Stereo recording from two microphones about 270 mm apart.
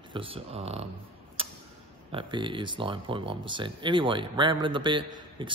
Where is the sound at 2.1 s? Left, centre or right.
Centre.